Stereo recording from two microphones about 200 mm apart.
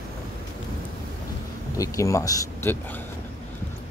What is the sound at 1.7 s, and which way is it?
Speech, 15° left (ahead or behind).